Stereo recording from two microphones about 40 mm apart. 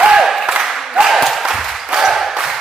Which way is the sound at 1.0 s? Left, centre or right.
Centre.